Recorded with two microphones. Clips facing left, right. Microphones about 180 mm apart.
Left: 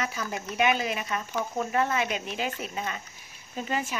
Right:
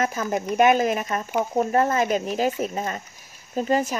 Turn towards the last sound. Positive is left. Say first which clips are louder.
# right 8 dB
turn(degrees=-40)  # may be behind; listen again after turning